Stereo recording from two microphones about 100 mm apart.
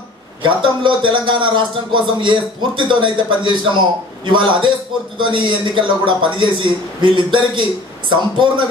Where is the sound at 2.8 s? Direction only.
50° right (ahead or behind).